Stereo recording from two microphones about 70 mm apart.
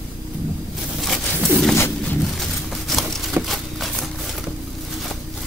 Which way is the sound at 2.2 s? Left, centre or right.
Centre.